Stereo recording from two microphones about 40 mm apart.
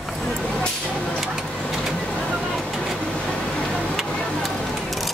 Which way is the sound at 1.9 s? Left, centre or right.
Centre.